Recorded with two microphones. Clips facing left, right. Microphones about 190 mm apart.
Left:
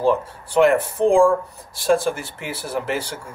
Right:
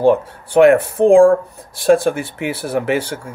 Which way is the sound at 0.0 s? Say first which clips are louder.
Right 6 dB; 60° right (ahead or behind).